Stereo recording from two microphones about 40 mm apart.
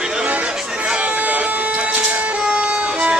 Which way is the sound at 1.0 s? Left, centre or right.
Right.